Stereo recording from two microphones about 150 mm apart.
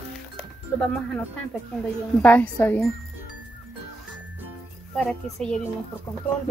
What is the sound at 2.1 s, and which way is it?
Speech, 10° left (ahead or behind).